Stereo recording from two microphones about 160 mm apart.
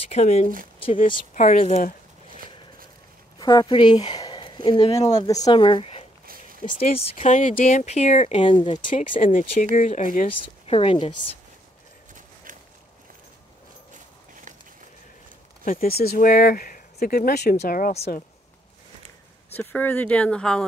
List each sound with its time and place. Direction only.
0.1 s speech: 45° left (ahead or behind)
3.3 s speech: 25° left (ahead or behind)
4.9 s speech: 25° left (ahead or behind)
6.2 s a sound: 65° right (ahead or behind)
7.2 s speech: 55° left (ahead or behind)
8.5 s speech: 30° left (ahead or behind)
8.9 s speech: 55° left (ahead or behind)
10.4 s speech: 35° left (ahead or behind)
15.6 s speech: 60° left (ahead or behind)
19.5 s speech: 10° left (ahead or behind)